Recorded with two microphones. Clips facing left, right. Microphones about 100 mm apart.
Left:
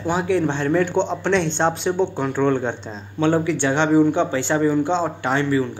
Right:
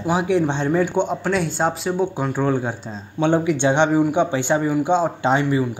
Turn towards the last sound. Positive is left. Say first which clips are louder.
# right 1 dB
turn(degrees=-15)  # may be behind; listen again after turning